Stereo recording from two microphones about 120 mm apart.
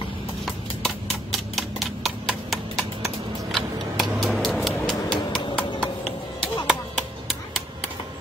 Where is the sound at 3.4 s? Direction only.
Centre (ahead or behind).